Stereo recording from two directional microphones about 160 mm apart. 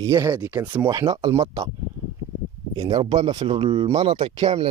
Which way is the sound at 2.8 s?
35° right (ahead or behind).